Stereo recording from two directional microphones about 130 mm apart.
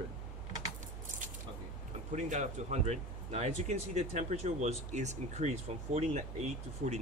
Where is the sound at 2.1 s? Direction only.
70° right (ahead or behind).